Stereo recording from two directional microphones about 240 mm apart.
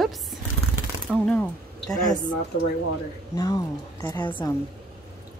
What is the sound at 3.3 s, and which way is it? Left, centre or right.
Speech, centre.